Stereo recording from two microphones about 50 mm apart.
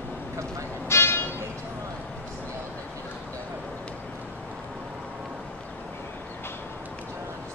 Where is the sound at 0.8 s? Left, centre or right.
Left.